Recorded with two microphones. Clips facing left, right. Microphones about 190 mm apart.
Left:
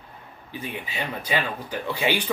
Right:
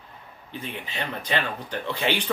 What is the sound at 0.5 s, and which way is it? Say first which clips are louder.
Speech: left 1 dB; 10° left (ahead or behind).